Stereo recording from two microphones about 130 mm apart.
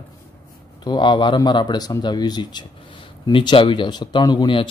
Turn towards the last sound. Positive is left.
turn(degrees=40)  # may be behind; listen again after turning